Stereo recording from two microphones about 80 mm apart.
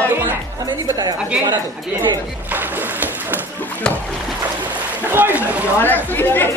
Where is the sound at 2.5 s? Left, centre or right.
Right.